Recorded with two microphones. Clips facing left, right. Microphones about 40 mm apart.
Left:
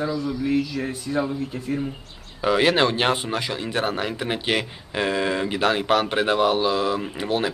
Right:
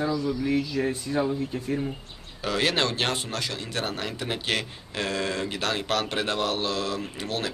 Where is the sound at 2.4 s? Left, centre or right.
Centre.